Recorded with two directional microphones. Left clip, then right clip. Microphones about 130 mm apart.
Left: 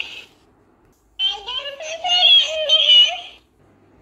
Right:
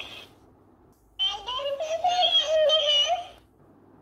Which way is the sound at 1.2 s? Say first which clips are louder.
Left 5 dB; 10° right (ahead or behind).